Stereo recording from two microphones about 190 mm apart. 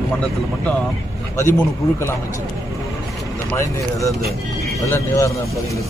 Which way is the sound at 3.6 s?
15° left (ahead or behind).